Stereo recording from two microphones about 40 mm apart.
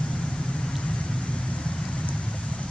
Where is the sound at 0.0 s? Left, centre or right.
Left.